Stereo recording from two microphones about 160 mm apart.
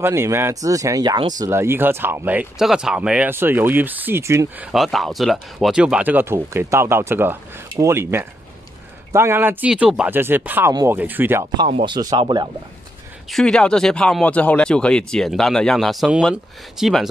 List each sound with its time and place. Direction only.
0.0 s speech: 15° right (ahead or behind)
4.6 s speech: centre (ahead or behind)
10.7 s speech: 25° right (ahead or behind)
11.0 s speech: 10° right (ahead or behind)
11.8 s speech: 25° right (ahead or behind)
13.3 s speech: 5° left (ahead or behind)